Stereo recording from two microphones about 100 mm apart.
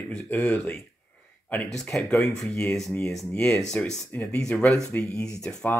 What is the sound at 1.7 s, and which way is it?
Speech, 5° left (ahead or behind).